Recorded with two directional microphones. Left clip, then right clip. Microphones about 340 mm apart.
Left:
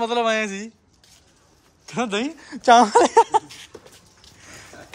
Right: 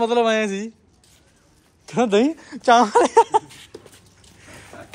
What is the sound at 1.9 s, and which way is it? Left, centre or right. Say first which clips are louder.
Speech: right 7 dB; centre.